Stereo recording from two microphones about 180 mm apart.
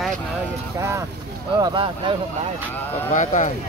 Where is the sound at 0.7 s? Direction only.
15° right (ahead or behind).